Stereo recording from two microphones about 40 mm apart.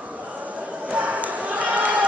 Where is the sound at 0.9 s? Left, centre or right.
Right.